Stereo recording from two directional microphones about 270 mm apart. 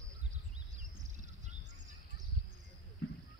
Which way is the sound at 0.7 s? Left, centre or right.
Right.